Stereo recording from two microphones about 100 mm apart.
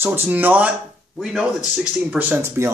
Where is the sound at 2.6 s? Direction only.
25° right (ahead or behind).